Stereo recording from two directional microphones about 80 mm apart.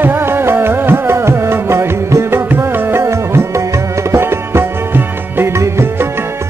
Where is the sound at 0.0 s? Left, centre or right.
Right.